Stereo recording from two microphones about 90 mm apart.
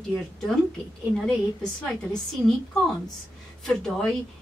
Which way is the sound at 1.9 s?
5° left (ahead or behind).